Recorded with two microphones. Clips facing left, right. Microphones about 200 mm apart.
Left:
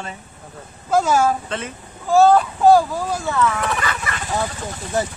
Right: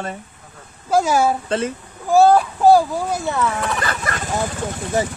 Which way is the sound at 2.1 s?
10° right (ahead or behind).